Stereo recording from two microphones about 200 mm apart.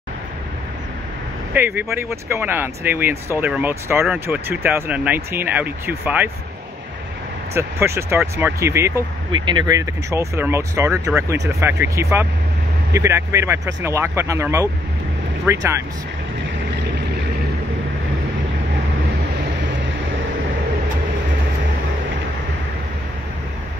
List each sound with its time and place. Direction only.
1.8 s speech: 15° right (ahead or behind)
7.5 s speech: 15° right (ahead or behind)